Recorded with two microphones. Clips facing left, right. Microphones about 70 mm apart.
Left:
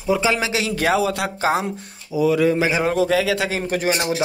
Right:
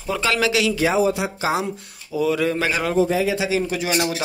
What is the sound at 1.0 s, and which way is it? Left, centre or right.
Speech, left.